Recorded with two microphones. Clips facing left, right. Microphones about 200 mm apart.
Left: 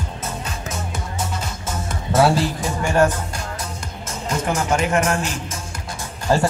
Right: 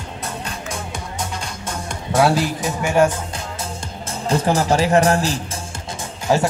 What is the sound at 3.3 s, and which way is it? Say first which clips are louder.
Music: right 1 dB; 30° right (ahead or behind).